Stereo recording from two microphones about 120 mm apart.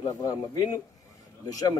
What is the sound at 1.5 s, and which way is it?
Speech, 30° left (ahead or behind).